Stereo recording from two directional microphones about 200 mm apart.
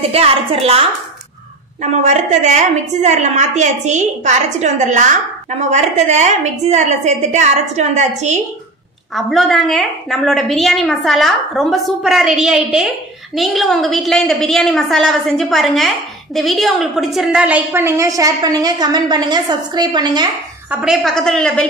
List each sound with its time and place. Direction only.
0.1 s a woman's voice: 30° right (ahead or behind)
9.1 s a woman's voice: centre (ahead or behind); by 20.2 s 20° right (ahead or behind)
20.8 s a woman's voice: centre (ahead or behind)